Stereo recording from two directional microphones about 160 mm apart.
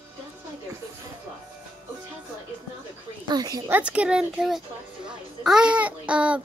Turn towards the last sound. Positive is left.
turn(degrees=-5)  # may be behind; listen again after turning